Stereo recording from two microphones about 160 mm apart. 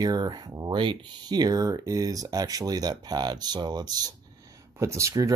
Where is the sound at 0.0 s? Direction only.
25° right (ahead or behind).